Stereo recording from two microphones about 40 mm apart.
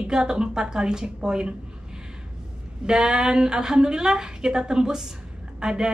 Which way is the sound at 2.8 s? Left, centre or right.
Centre.